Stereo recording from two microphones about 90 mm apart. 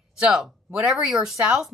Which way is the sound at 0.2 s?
5° right (ahead or behind).